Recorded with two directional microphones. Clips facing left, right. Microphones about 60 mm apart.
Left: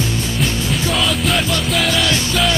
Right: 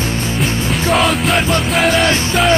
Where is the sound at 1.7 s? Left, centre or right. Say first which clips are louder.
Right 4 dB; right.